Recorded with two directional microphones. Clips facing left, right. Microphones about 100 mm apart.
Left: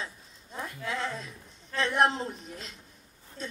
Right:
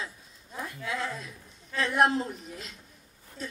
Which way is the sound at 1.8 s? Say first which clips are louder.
Right 1 dB; 30° left (ahead or behind).